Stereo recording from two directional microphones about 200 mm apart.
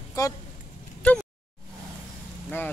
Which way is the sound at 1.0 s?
5° left (ahead or behind).